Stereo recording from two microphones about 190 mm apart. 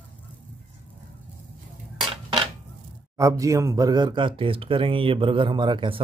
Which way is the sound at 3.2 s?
15° right (ahead or behind).